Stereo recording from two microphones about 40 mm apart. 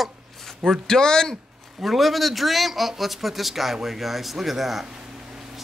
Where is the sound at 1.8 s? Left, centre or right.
Centre.